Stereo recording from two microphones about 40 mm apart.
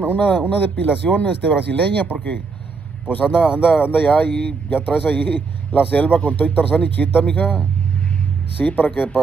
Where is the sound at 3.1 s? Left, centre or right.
Left.